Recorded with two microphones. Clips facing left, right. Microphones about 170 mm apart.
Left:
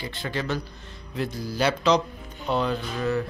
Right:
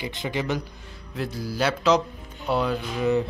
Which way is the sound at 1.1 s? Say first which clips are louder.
Even; 5° right (ahead or behind).